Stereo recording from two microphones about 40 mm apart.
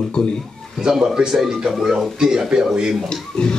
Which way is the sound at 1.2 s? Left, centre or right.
Centre.